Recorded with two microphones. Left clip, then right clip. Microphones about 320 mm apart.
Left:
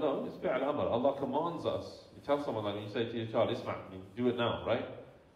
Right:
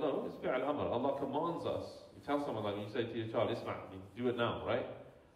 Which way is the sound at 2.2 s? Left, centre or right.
Centre.